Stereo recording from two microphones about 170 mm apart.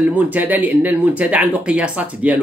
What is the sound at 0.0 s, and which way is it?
Speech, 10° right (ahead or behind).